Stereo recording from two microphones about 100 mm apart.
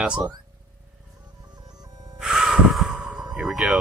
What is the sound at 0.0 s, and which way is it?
Speech, 10° right (ahead or behind).